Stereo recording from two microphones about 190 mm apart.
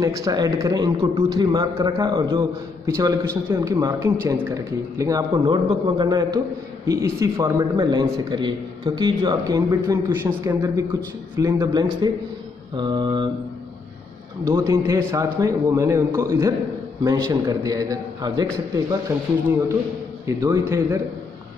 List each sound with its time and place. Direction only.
0.0 s speech: 20° right (ahead or behind)
14.5 s a man's voice: 15° right (ahead or behind)